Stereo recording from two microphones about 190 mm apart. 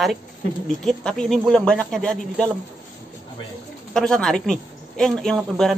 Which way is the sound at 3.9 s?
5° left (ahead or behind).